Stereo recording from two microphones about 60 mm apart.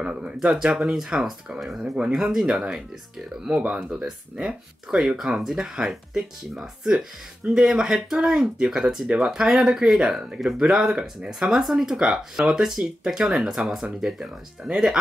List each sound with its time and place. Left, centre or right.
0.0 s speech: centre
2.0 s speech: centre
2.3 s speech: centre